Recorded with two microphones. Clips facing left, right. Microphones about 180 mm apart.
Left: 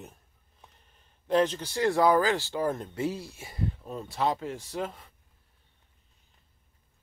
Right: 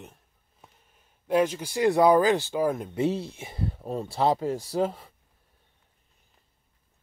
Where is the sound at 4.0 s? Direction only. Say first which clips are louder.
Right 5 dB; 30° right (ahead or behind).